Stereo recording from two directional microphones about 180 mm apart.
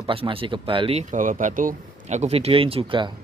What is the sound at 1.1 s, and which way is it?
A man's voice, 45° right (ahead or behind).